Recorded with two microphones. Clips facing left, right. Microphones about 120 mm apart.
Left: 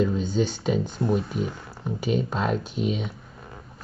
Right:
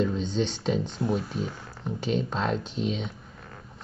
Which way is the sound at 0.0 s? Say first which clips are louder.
Left 3 dB; 5° left (ahead or behind).